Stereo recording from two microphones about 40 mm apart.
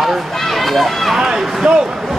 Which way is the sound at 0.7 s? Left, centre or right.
Centre.